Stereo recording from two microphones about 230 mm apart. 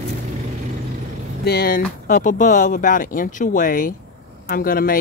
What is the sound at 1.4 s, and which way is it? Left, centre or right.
Speech, left.